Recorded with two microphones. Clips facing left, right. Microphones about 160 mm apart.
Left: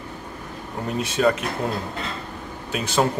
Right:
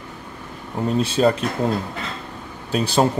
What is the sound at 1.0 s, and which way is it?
Speech, 30° right (ahead or behind).